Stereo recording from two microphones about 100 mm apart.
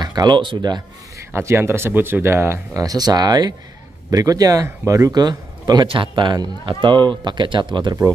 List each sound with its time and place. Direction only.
0.0 s speech: 45° right (ahead or behind)
1.3 s speech: 25° right (ahead or behind); by 8.0 s 50° right (ahead or behind)